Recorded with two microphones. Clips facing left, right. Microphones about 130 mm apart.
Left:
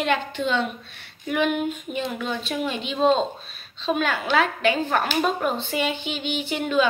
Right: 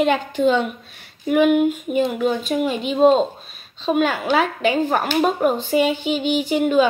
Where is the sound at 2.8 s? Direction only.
45° right (ahead or behind).